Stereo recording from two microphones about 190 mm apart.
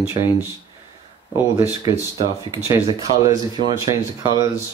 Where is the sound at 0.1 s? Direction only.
10° right (ahead or behind).